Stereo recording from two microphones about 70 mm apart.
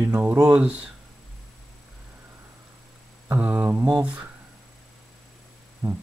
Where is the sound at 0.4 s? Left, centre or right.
Centre.